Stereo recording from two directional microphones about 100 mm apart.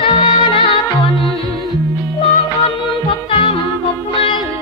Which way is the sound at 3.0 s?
60° left (ahead or behind).